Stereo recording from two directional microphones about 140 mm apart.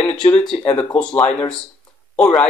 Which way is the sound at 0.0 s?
5° left (ahead or behind).